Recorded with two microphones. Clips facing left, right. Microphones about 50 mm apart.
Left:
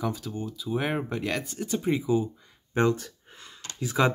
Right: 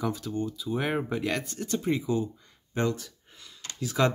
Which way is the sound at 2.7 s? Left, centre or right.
Left.